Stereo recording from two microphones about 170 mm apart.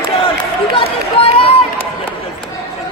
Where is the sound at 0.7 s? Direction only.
35° left (ahead or behind).